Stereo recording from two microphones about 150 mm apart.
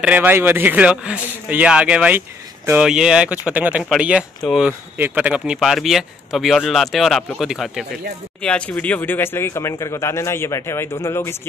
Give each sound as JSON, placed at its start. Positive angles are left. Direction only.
{"t": 0.0, "sound": "speech", "side_deg": -10}
{"t": 2.8, "sound": "speech", "side_deg": -5}
{"t": 4.9, "sound": "speech", "side_deg": -10}